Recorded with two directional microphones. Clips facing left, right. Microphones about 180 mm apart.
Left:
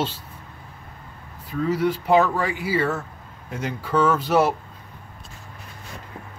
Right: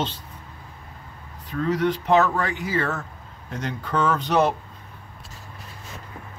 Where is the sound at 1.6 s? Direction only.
10° left (ahead or behind).